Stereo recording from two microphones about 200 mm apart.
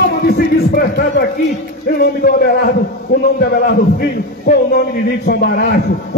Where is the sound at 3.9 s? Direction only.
50° left (ahead or behind).